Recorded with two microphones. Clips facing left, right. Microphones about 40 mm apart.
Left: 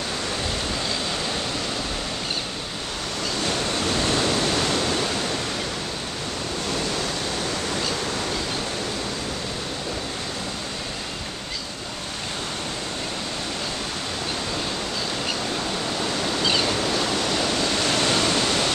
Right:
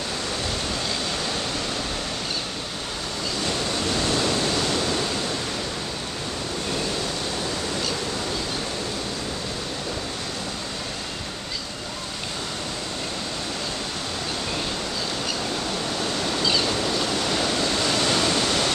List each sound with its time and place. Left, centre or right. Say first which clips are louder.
3.4 s waves: left 1 dB; left
16.0 s waves: left 1 dB; centre
17.9 s waterfall: left 1 dB; centre
18.2 s pink noise: even; centre